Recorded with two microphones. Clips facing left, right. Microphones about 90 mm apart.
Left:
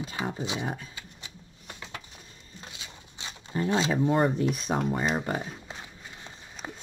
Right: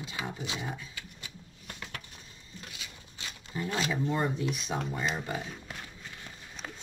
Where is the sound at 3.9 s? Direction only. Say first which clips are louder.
Left 6 dB; 50° left (ahead or behind).